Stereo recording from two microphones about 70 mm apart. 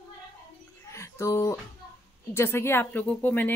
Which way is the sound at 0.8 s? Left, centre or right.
Left.